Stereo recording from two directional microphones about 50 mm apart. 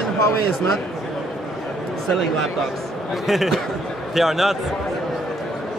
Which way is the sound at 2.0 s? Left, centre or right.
Centre.